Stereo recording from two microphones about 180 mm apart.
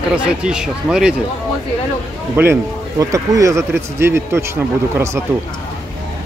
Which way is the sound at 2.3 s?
15° right (ahead or behind).